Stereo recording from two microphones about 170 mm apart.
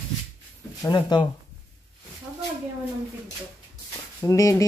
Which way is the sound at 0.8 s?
25° left (ahead or behind).